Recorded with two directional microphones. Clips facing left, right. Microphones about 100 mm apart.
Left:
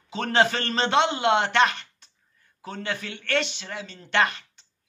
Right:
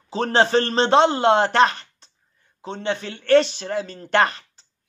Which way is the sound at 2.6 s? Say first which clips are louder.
Right 6 dB; 25° right (ahead or behind).